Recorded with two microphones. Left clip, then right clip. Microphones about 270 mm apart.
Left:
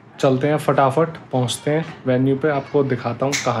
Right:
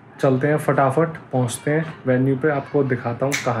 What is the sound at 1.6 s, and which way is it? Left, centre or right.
Speech, centre.